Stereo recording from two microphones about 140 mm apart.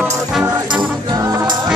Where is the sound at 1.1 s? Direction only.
25° right (ahead or behind).